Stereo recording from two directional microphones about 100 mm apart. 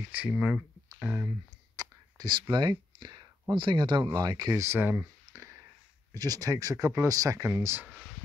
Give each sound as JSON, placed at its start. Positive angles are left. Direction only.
{"t": 0.1, "sound": "speech", "side_deg": -15}
{"t": 1.8, "sound": "speech", "side_deg": -45}
{"t": 4.6, "sound": "speech", "side_deg": -20}
{"t": 5.2, "sound": "clicking", "side_deg": -30}
{"t": 6.1, "sound": "speech", "side_deg": -40}